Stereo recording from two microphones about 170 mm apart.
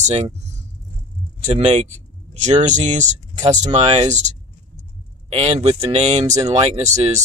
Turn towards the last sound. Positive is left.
turn(degrees=-40)  # may be behind; listen again after turning